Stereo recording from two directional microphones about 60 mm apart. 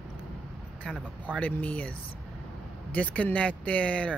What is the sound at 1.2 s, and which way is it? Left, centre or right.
Speech, left.